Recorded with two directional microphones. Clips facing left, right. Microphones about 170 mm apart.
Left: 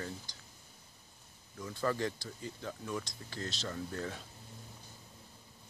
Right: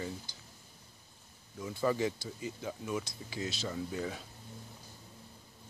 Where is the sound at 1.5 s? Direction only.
10° right (ahead or behind).